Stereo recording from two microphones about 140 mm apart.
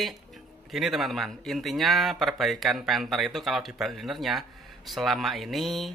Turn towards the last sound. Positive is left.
turn(degrees=0)  # may be behind; listen again after turning